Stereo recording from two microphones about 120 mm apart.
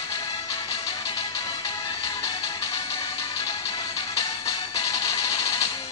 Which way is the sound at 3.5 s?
30° left (ahead or behind).